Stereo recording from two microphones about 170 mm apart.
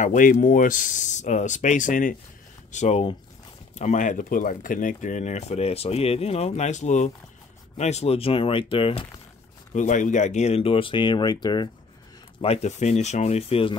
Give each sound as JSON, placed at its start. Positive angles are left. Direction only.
{"t": 0.0, "sound": "speech", "side_deg": 50}
{"t": 2.7, "sound": "speech", "side_deg": 40}
{"t": 9.8, "sound": "speech", "side_deg": 45}
{"t": 12.4, "sound": "speech", "side_deg": 40}